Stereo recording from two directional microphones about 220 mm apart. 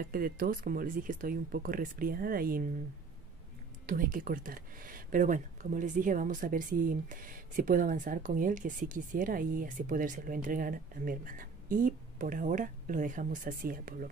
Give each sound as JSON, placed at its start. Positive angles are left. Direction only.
{"t": 0.0, "sound": "speech", "side_deg": -40}
{"t": 3.8, "sound": "speech", "side_deg": -40}